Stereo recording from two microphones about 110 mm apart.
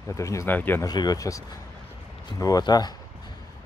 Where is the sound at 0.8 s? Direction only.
35° left (ahead or behind).